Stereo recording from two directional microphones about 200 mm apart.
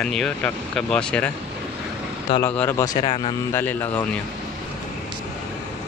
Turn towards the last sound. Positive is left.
turn(degrees=10)  # may be behind; listen again after turning